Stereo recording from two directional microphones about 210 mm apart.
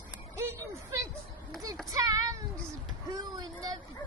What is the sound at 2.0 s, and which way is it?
Child singing, 15° right (ahead or behind).